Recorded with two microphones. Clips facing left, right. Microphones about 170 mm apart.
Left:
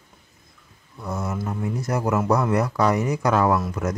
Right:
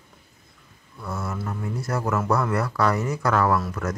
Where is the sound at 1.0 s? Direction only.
20° left (ahead or behind).